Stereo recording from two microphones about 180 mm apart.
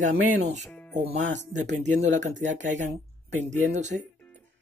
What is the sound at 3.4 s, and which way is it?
Speech, 40° right (ahead or behind).